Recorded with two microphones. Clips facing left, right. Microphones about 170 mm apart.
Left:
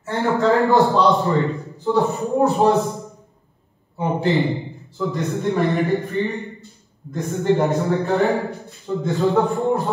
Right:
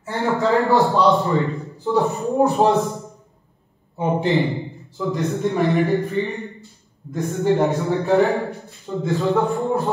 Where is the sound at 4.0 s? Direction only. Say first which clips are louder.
Even; 20° right (ahead or behind).